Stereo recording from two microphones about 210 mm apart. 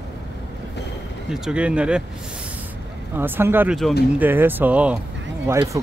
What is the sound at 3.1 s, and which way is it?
Speech, 10° right (ahead or behind).